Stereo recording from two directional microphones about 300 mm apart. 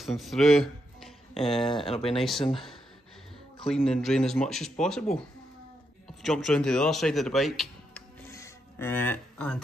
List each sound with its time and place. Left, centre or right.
0.0 s speech: centre
1.7 s speech: centre
2.1 s speech: centre
2.4 s speech: centre
3.6 s speech: centre
6.0 s speech: centre